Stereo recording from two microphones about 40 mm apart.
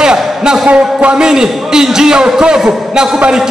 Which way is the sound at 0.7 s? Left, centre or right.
Right.